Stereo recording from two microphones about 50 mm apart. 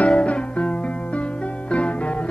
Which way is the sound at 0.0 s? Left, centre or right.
Left.